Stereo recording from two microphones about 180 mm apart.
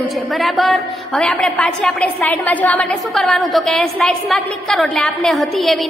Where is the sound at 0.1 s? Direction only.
Centre (ahead or behind).